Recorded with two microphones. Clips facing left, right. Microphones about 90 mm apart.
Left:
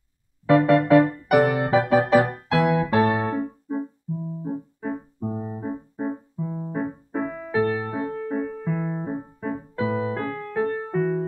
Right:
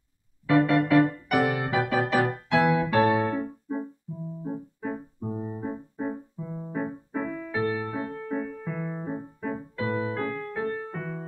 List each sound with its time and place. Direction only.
0.5 s music: 30° left (ahead or behind)
5.2 s music: 25° left (ahead or behind)
7.5 s music: 40° left (ahead or behind)